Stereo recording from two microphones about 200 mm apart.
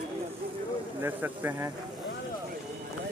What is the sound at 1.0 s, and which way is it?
Speech, 10° right (ahead or behind).